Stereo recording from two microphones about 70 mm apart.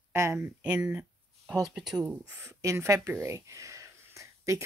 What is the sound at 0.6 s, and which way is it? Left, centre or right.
Speech, centre.